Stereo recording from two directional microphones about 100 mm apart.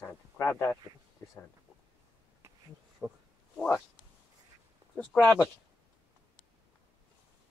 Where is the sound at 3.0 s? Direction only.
15° right (ahead or behind).